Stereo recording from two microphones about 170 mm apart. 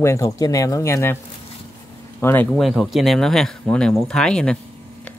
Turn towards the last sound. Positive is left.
turn(degrees=5)  # may be behind; listen again after turning